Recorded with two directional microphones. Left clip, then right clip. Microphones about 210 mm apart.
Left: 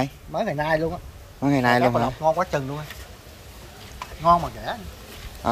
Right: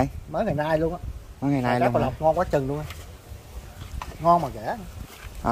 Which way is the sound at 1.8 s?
45° right (ahead or behind).